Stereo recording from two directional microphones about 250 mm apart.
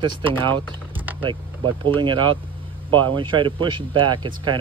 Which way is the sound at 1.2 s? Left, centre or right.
Centre.